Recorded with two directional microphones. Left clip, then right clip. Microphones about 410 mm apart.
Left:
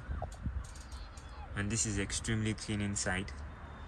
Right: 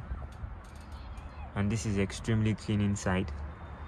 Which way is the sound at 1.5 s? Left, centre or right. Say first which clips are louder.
Right 3 dB; centre.